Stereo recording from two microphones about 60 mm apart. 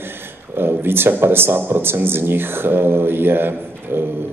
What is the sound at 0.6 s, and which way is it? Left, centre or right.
Speech, right.